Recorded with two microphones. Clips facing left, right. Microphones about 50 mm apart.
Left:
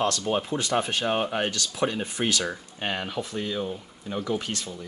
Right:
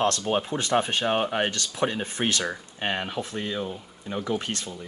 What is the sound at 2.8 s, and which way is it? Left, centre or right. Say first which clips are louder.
Speech: right 1 dB; right.